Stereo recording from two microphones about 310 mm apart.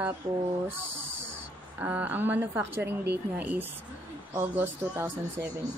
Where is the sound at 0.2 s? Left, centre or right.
Centre.